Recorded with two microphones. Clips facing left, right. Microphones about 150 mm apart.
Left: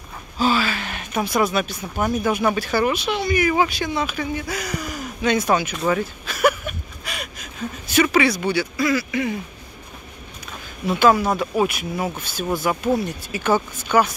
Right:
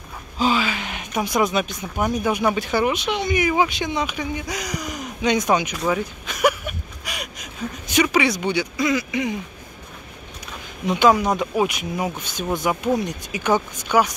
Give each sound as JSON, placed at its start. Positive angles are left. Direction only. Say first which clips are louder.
{"t": 0.4, "sound": "gasp", "louder": "left 1 dB", "side_deg": -15}
{"t": 2.0, "sound": "speech", "louder": "left 1 dB", "side_deg": -15}
{"t": 10.9, "sound": "speech", "louder": "even", "side_deg": -15}